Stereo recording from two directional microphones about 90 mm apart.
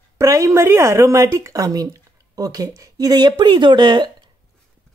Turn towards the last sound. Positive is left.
turn(degrees=-60)  # may be behind; listen again after turning